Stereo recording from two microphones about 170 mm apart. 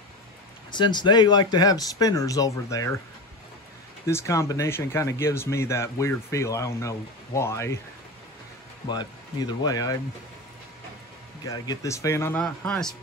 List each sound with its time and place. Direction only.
0.7 s speech: 25° left (ahead or behind)
4.0 s speech: 15° left (ahead or behind)
8.8 s speech: 25° left (ahead or behind)
11.4 s speech: 20° left (ahead or behind); by 12.9 s 5° left (ahead or behind)